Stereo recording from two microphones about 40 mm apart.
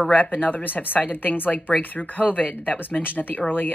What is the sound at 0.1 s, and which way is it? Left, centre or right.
Speech, left.